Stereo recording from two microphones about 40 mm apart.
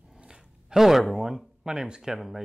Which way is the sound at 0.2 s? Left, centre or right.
Centre.